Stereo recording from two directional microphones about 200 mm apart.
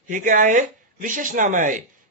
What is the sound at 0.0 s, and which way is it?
Speech, 40° right (ahead or behind).